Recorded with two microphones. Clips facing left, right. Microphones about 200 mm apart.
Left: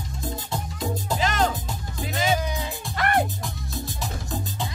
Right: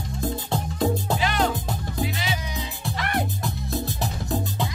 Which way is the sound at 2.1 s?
45° left (ahead or behind).